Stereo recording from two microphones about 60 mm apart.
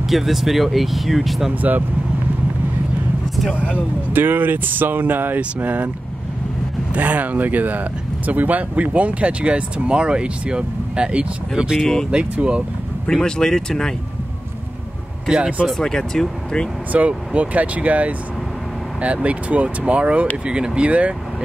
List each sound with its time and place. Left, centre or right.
0.0 s speech: centre
1.5 s speech: right
4.1 s speech: right
6.9 s speech: right
11.8 s speech: centre
12.1 s speech: centre
13.1 s speech: centre
15.2 s speech: centre
15.7 s speech: centre
16.9 s speech: right
19.2 s speech: right